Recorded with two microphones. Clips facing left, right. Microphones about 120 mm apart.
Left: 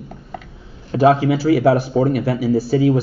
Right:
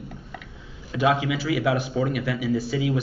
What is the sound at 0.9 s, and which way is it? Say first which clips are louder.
A man's voice: left 8 dB; 40° left (ahead or behind).